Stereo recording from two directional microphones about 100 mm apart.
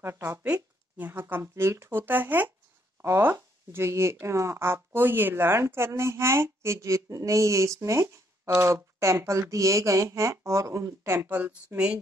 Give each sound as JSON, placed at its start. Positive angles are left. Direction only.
{"t": 0.9, "sound": "speech", "side_deg": -20}